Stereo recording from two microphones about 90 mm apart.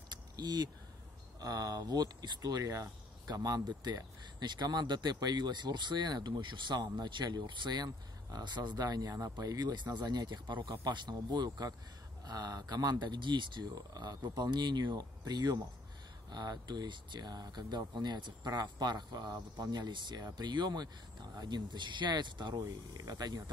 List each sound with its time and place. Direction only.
0.4 s speech: 50° right (ahead or behind)